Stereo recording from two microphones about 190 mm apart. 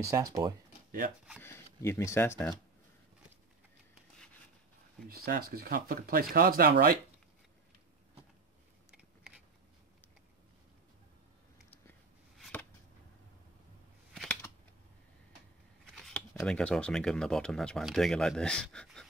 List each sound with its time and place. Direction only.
0.0 s speech: 15° right (ahead or behind)
1.4 s speech: 15° left (ahead or behind)
5.0 s speech: 50° right (ahead or behind)
12.4 s a sound: 5° left (ahead or behind)
14.1 s scissors: 5° left (ahead or behind)
15.8 s speech: centre (ahead or behind)